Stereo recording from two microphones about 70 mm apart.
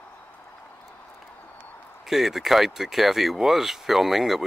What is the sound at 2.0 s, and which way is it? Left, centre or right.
Speech, centre.